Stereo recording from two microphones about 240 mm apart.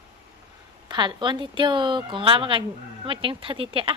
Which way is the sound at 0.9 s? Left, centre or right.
Centre.